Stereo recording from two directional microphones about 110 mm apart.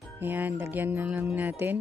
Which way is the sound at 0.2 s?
15° right (ahead or behind).